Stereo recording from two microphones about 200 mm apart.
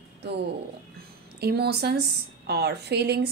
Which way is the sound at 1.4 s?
55° right (ahead or behind).